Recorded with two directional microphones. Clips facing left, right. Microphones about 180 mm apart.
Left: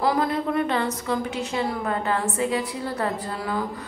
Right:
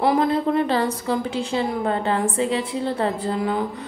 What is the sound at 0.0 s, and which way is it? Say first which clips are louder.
A woman's voice: right 4 dB; 25° right (ahead or behind).